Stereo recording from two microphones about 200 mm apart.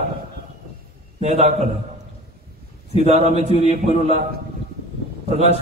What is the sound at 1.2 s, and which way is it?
Speech, 30° right (ahead or behind).